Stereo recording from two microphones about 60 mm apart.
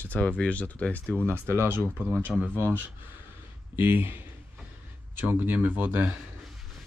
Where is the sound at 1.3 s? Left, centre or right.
Right.